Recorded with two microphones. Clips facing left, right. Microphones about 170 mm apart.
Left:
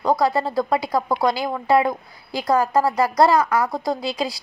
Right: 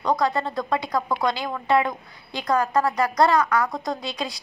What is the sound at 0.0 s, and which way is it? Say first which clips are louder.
A woman's voice: left 3 dB; 30° left (ahead or behind).